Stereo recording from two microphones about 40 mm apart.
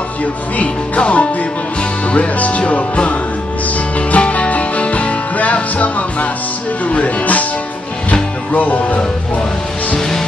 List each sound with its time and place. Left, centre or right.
0.2 s speech: left
4.1 s music: left
6.9 s speech: left
8.1 s music: left
9.9 s music: centre